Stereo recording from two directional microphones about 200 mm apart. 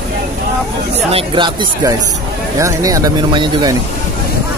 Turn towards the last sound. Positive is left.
turn(degrees=-20)  # may be behind; listen again after turning